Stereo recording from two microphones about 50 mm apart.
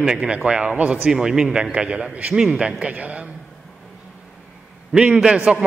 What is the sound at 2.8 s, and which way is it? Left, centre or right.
Speech, right.